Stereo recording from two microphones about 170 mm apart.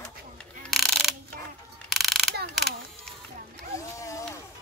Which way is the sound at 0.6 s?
Centre (ahead or behind).